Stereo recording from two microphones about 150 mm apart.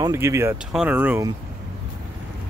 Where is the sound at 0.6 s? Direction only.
5° right (ahead or behind).